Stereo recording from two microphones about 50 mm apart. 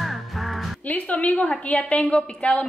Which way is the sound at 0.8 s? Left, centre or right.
Left.